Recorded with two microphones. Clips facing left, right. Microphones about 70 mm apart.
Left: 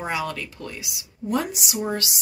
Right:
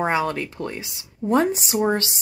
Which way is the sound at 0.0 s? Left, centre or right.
Right.